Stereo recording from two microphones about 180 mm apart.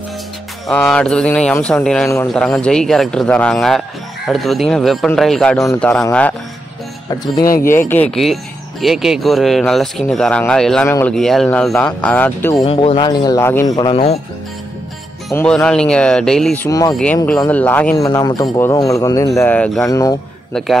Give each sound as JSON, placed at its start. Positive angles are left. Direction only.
{"t": 0.7, "sound": "speech", "side_deg": 5}
{"t": 2.4, "sound": "speech", "side_deg": 5}
{"t": 7.4, "sound": "speech", "side_deg": 55}
{"t": 7.9, "sound": "speech", "side_deg": 5}
{"t": 12.6, "sound": "speech", "side_deg": 30}
{"t": 15.3, "sound": "speech", "side_deg": 5}
{"t": 16.6, "sound": "speech", "side_deg": 20}
{"t": 16.9, "sound": "speech", "side_deg": 5}
{"t": 19.8, "sound": "speech", "side_deg": 20}